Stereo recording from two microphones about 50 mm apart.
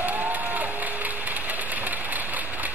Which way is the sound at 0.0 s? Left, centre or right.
Right.